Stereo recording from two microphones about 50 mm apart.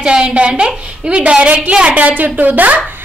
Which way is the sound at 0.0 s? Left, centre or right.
Centre.